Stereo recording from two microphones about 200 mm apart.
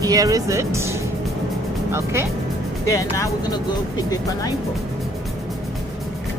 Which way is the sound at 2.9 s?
15° left (ahead or behind).